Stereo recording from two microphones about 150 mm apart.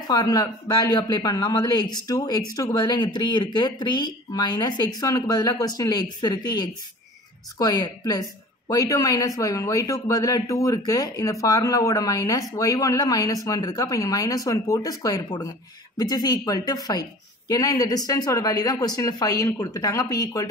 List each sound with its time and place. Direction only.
0.1 s a woman's voice: 25° left (ahead or behind)